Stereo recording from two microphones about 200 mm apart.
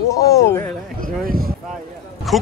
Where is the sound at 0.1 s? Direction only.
15° left (ahead or behind).